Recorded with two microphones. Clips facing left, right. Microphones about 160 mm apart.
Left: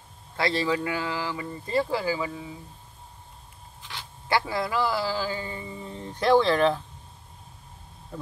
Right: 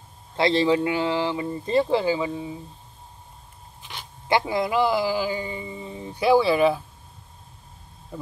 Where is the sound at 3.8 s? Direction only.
20° right (ahead or behind).